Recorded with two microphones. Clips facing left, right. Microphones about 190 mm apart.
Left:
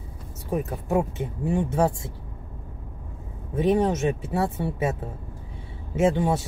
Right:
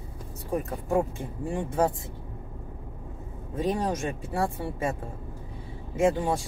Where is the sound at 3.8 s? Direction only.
25° left (ahead or behind).